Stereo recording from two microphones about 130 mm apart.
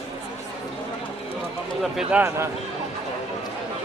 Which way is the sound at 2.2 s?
20° right (ahead or behind).